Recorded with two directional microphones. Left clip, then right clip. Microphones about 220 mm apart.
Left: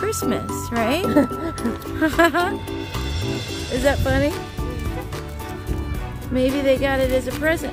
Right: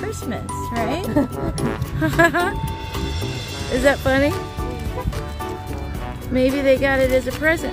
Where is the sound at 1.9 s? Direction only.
20° left (ahead or behind).